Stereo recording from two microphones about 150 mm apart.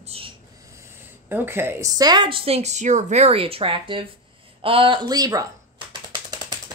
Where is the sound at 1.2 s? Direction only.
15° right (ahead or behind).